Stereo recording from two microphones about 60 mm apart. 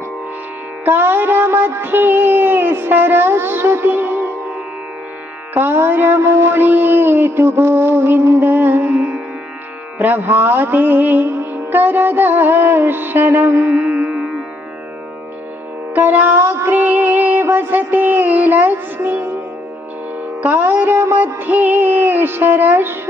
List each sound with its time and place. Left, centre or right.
0.8 s music: right
5.5 s music: right
13.7 s music: right
15.9 s music: right
16.3 s child singing: right
16.7 s music: right
20.5 s music: right